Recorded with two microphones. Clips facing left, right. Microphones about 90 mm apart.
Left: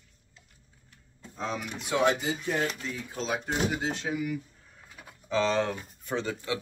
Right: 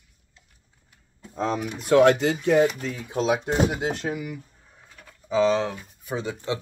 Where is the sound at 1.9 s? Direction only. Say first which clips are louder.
Right 9 dB; 60° right (ahead or behind).